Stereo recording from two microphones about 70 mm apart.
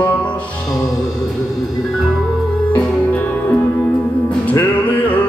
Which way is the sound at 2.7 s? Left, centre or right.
Left.